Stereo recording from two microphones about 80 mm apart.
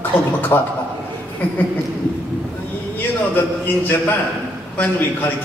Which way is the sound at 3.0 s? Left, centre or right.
Left.